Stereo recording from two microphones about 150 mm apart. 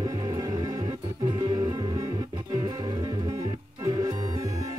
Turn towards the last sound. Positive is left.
turn(degrees=-25)  # may be behind; listen again after turning